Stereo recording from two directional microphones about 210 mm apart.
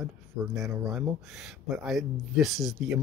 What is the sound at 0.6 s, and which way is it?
Speech, centre (ahead or behind).